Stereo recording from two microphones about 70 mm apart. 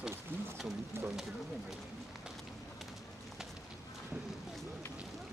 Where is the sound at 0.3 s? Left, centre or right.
Right.